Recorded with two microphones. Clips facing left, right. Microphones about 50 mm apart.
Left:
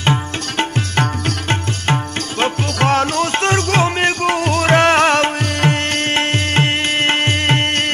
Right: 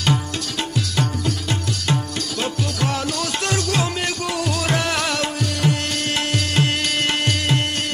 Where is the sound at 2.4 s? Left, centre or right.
Left.